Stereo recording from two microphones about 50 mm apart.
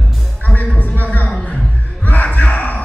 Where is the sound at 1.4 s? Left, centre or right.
Left.